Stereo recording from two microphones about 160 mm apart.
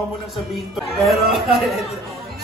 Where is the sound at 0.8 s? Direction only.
Centre (ahead or behind).